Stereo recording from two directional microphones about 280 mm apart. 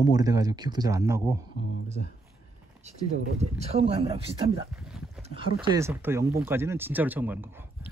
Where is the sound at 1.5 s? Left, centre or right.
Left.